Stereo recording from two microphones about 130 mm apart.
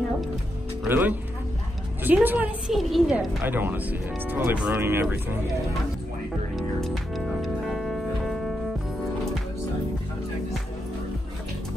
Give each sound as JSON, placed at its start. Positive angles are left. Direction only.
{"t": 0.8, "sound": "speech", "side_deg": -15}
{"t": 2.7, "sound": "a woman's voice", "side_deg": 0}
{"t": 3.4, "sound": "speech", "side_deg": -15}
{"t": 6.5, "sound": "music", "side_deg": 0}